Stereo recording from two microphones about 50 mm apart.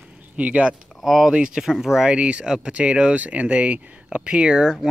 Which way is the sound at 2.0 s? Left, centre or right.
Right.